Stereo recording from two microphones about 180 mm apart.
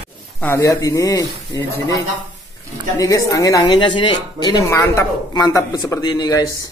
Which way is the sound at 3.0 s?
20° left (ahead or behind).